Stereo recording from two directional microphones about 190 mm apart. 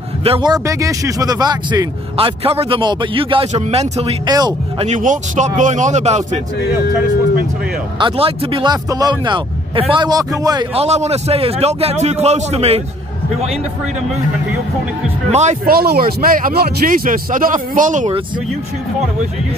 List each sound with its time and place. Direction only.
0.2 s speech: 25° right (ahead or behind)
4.3 s speech: 20° right (ahead or behind)
4.8 s a man's voice: 40° right (ahead or behind)
8.0 s a man's voice: 30° right (ahead or behind)
15.2 s a man's voice: 35° right (ahead or behind)
15.6 s speech: 55° right (ahead or behind)